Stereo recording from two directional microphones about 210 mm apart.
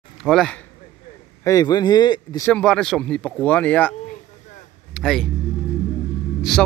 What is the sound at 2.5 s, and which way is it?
Speech, 5° left (ahead or behind).